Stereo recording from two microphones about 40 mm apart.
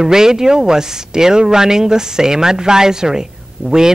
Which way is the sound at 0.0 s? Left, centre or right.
Centre.